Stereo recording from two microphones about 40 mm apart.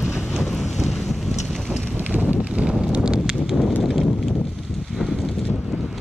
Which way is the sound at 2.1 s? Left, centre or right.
Right.